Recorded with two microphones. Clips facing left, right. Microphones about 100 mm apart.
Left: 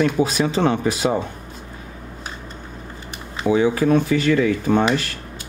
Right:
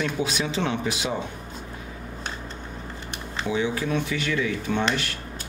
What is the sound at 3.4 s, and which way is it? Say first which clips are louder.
Speech: left 9 dB; 45° left (ahead or behind).